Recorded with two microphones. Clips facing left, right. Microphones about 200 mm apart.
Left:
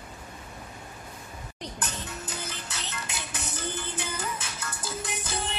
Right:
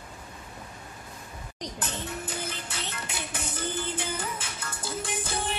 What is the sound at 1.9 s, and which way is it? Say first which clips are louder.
Music: right 3 dB; 55° right (ahead or behind).